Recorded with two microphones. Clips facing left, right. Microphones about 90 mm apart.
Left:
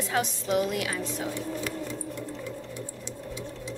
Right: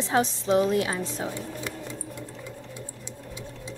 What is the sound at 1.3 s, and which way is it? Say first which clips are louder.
Sewing machine: left 2 dB; 20° right (ahead or behind).